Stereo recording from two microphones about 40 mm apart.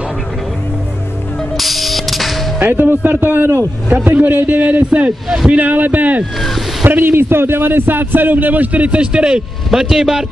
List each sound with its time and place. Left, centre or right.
1.6 s music: centre
2.6 s a man's voice: right
6.8 s speech: right
7.1 s a man's voice: right
9.0 s a man's voice: right